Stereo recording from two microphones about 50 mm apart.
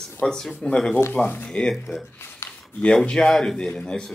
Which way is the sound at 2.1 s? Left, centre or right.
Left.